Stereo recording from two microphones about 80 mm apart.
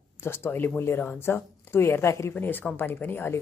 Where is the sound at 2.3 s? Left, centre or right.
Left.